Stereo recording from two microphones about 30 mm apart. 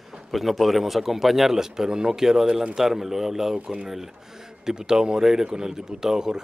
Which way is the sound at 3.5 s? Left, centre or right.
Right.